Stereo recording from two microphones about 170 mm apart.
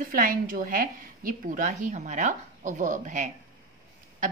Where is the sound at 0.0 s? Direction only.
55° right (ahead or behind).